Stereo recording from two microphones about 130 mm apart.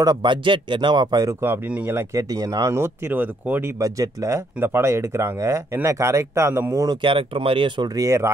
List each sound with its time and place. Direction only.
0.0 s speech: 35° right (ahead or behind)
1.4 s speech: 15° right (ahead or behind)
3.8 s speech: 25° right (ahead or behind)
7.0 s speech: 40° right (ahead or behind); by 8.3 s 25° right (ahead or behind)